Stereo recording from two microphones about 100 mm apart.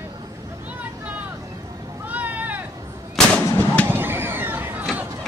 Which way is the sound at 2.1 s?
15° right (ahead or behind).